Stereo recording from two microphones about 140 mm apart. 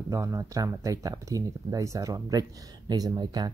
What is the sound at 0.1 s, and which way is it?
Speech, 20° right (ahead or behind).